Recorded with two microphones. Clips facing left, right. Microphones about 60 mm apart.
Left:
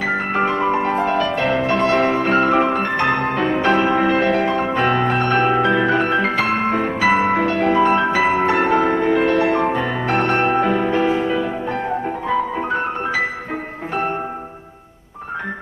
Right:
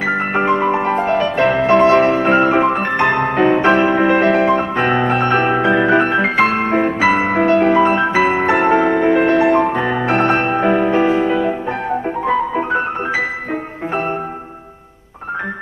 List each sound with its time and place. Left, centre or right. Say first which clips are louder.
0.4 s music: right 3 dB; centre
2.4 s music: right 2 dB; centre
7.1 s music: left 3 dB; centre
7.3 s music: right 4 dB; right
9.4 s music: right 4 dB; centre